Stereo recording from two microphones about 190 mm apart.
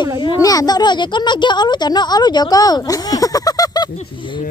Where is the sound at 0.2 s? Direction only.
20° left (ahead or behind).